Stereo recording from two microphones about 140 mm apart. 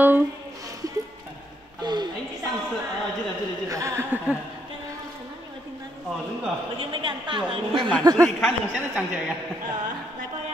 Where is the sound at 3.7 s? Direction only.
20° right (ahead or behind).